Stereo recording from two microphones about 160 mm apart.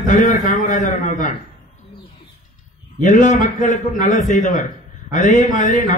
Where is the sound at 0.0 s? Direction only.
50° left (ahead or behind).